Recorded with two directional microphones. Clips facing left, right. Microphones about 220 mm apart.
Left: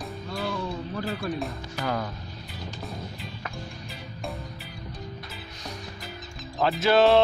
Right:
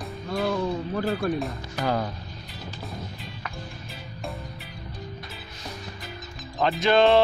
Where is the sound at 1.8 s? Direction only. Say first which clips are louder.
Right 3 dB; 30° right (ahead or behind).